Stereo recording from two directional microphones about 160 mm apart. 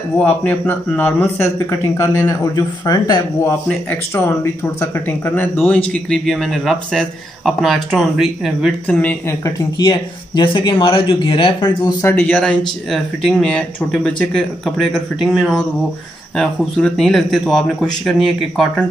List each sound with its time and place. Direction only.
0.4 s speech: 10° left (ahead or behind)
3.6 s speech: 15° left (ahead or behind)
8.8 s speech: 10° left (ahead or behind)
9.8 s speech: 30° left (ahead or behind)
12.0 s speech: 15° left (ahead or behind)